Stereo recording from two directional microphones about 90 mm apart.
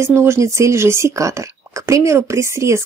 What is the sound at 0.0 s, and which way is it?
Speech, 30° right (ahead or behind).